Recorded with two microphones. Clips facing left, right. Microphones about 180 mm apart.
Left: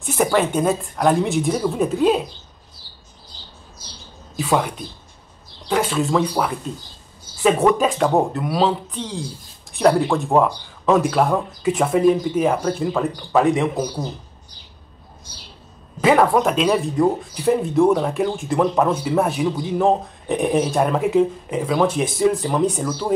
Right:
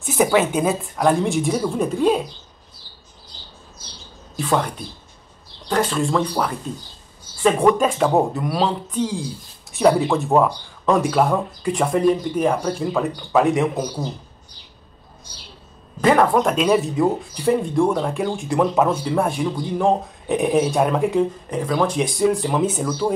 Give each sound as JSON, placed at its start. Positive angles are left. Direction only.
{"t": 0.0, "sound": "speech", "side_deg": 0}
{"t": 4.4, "sound": "speech", "side_deg": 5}
{"t": 7.6, "sound": "speech", "side_deg": 0}
{"t": 16.0, "sound": "speech", "side_deg": 5}